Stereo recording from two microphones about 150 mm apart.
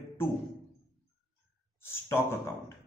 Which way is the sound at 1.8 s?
15° left (ahead or behind).